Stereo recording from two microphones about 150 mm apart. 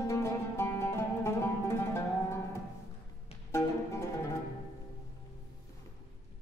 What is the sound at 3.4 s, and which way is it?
Music, 20° left (ahead or behind).